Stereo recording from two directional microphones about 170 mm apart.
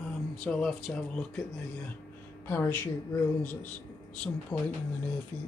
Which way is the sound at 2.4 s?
15° left (ahead or behind).